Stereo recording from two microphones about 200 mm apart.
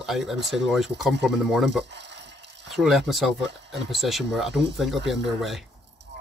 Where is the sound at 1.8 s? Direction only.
60° right (ahead or behind).